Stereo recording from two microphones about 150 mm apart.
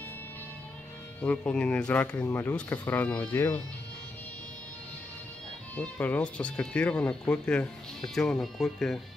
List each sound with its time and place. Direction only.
1.2 s speech: 10° left (ahead or behind)
5.8 s speech: 10° left (ahead or behind)